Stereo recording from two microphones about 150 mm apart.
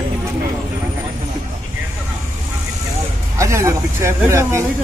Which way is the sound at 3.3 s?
20° right (ahead or behind).